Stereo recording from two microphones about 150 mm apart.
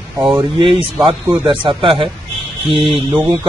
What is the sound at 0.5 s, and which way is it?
Speech, 35° right (ahead or behind).